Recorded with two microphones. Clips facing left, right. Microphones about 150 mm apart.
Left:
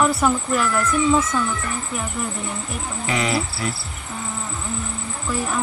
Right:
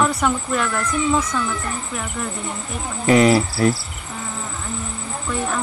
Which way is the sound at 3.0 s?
40° right (ahead or behind).